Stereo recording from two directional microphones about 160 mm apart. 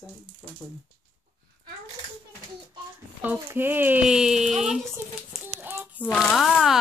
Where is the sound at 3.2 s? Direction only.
10° right (ahead or behind).